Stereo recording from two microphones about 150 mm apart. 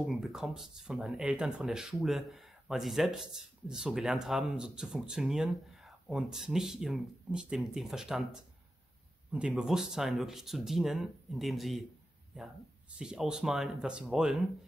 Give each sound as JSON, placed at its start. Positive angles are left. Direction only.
{"t": 0.0, "sound": "speech", "side_deg": 0}
{"t": 13.0, "sound": "speech", "side_deg": -5}